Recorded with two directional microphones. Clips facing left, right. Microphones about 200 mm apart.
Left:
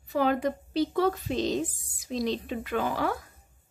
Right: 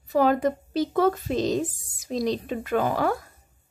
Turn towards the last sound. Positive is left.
turn(degrees=-45)  # may be behind; listen again after turning